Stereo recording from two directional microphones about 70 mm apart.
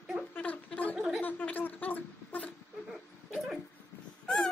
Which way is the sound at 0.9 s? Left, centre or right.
Centre.